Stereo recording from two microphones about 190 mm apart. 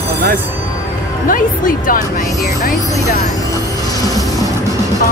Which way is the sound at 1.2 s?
45° left (ahead or behind).